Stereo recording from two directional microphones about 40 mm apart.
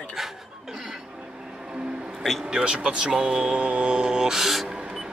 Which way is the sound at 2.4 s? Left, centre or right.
Right.